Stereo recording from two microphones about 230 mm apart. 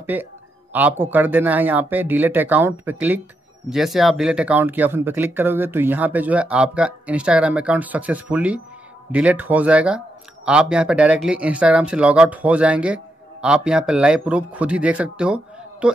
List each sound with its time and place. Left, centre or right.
0.0 s speech: centre